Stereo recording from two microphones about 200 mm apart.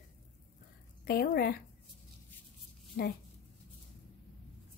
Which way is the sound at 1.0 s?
50° left (ahead or behind).